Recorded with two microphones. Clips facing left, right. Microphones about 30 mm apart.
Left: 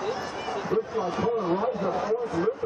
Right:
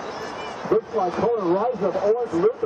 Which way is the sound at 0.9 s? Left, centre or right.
Centre.